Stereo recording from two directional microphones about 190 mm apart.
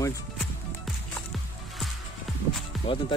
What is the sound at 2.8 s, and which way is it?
Music, 25° left (ahead or behind).